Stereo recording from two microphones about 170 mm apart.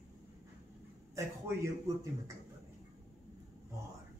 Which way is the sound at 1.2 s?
15° right (ahead or behind).